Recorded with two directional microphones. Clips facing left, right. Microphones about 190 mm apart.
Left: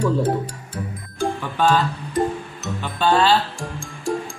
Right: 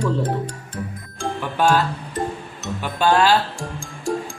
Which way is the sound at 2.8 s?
10° right (ahead or behind).